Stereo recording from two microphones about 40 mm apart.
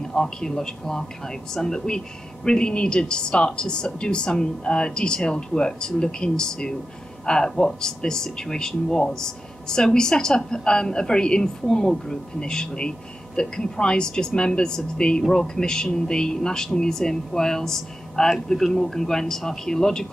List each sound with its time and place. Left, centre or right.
0.1 s a woman's voice: centre